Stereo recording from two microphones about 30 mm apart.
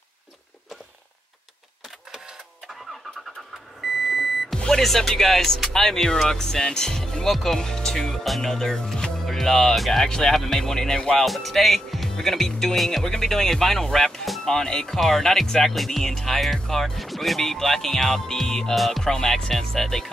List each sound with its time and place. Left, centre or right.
3.8 s beep: centre
4.6 s speech: centre
5.7 s speech: centre
7.2 s speech: centre
11.1 s speech: centre
15.7 s speech: centre
17.0 s music: centre
17.4 s speech: centre